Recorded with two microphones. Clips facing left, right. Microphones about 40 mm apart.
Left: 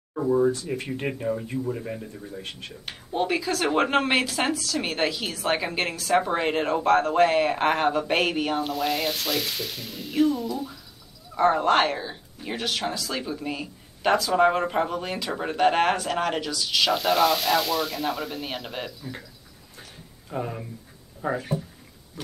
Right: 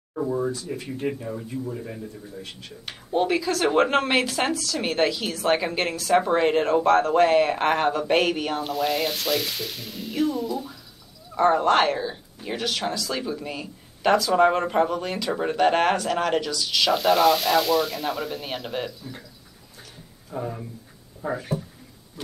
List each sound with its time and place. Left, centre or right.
0.1 s speech: centre
0.7 s speech: left
1.5 s speech: centre
3.1 s speech: centre
20.3 s speech: left
21.2 s speech: left